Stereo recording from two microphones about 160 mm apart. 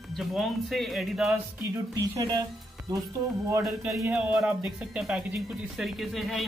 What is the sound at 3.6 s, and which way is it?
Speech, centre (ahead or behind).